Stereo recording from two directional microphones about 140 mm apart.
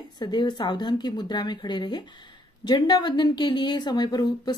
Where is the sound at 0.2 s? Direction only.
30° left (ahead or behind).